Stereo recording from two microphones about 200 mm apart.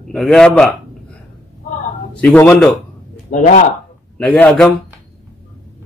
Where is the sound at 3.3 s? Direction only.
40° left (ahead or behind).